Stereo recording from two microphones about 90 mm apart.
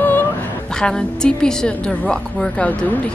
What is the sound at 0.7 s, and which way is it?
A woman's voice, 10° left (ahead or behind).